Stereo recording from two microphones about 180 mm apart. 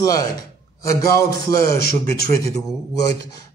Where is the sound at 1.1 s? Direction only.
60° left (ahead or behind).